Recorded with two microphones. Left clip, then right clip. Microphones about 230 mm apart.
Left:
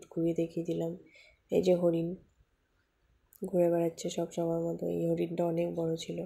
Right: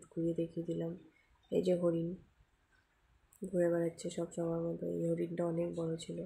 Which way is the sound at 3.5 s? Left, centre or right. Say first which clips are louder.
Left 5 dB; centre.